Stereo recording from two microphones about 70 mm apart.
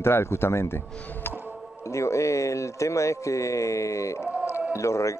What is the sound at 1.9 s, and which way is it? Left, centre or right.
Speech, left.